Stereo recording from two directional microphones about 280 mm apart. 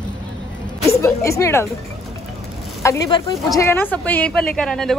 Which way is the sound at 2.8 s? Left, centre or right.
Centre.